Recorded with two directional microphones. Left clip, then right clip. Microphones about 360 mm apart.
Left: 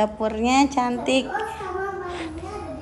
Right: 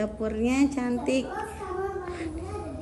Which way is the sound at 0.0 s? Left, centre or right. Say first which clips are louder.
Left 6 dB; centre.